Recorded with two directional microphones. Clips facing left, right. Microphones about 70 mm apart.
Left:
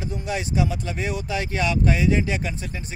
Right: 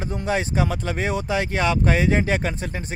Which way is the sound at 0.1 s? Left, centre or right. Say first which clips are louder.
Right 4 dB; right.